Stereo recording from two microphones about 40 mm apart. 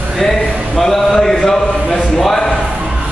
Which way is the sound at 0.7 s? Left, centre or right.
Centre.